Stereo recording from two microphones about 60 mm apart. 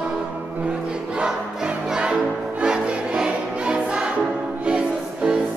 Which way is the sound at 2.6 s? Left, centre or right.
Centre.